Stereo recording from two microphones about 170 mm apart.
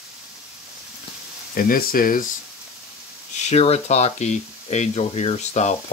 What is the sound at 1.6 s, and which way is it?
Speech, 55° left (ahead or behind).